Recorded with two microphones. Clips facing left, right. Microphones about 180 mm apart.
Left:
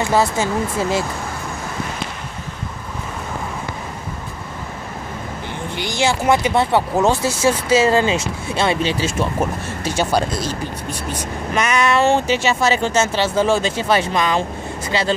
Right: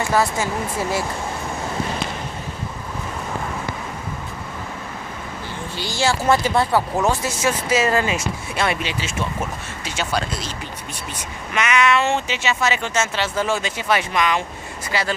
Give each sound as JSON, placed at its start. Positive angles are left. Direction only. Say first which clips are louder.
{"t": 0.0, "sound": "speech", "louder": "left 3 dB", "side_deg": 25}
{"t": 5.8, "sound": "speech", "louder": "left 2 dB", "side_deg": 20}
{"t": 11.5, "sound": "speech", "louder": "left 1 dB", "side_deg": 35}